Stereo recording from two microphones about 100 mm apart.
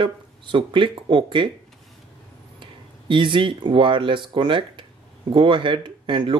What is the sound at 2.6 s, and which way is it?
Speech, 55° right (ahead or behind).